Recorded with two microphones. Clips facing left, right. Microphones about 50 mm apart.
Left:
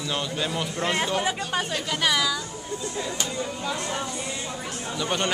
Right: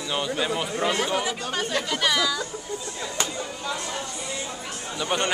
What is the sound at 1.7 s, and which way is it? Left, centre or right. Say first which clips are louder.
Speech: right 2 dB; centre.